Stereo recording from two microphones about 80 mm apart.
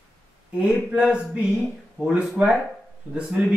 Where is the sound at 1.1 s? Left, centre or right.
Centre.